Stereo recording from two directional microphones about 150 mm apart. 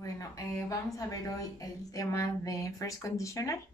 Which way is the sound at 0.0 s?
20° left (ahead or behind).